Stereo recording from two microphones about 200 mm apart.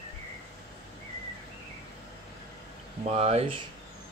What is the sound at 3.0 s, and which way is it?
Speech, 30° right (ahead or behind).